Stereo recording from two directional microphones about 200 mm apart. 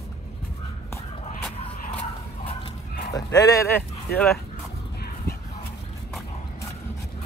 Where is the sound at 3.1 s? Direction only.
20° left (ahead or behind).